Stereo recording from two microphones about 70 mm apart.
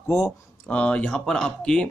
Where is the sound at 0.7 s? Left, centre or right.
Centre.